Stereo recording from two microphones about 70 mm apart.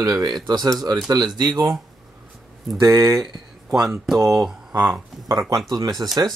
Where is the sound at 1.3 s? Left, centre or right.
Right.